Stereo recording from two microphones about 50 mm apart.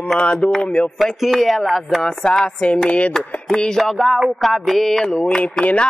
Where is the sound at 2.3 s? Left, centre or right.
Centre.